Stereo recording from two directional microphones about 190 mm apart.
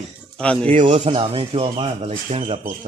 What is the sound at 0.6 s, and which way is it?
Speech, 30° right (ahead or behind).